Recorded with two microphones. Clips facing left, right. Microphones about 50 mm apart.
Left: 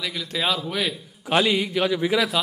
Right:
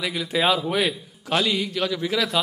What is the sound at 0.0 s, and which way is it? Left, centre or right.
Speech, centre.